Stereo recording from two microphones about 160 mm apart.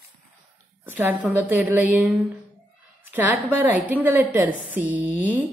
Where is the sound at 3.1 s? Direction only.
10° right (ahead or behind).